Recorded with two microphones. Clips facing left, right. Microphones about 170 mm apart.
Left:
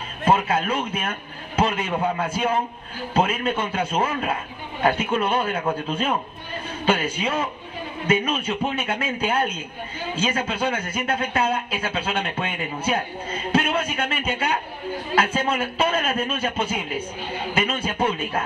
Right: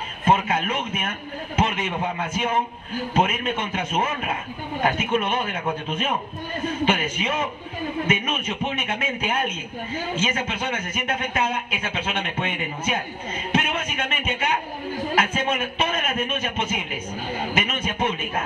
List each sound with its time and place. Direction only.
0.3 s a man's voice: 30° left (ahead or behind)